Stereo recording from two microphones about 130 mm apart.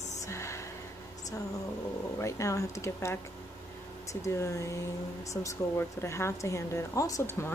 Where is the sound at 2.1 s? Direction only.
25° left (ahead or behind).